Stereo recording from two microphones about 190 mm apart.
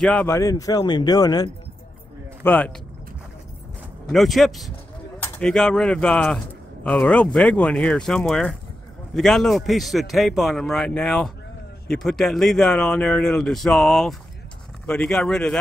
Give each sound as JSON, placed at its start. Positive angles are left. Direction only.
{"t": 0.0, "sound": "speech", "side_deg": 5}
{"t": 2.4, "sound": "speech", "side_deg": 10}
{"t": 4.1, "sound": "a man's voice", "side_deg": 0}